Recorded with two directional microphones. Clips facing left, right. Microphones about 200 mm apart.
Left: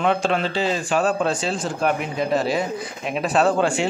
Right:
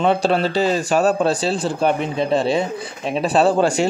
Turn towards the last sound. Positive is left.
turn(degrees=-40)  # may be behind; listen again after turning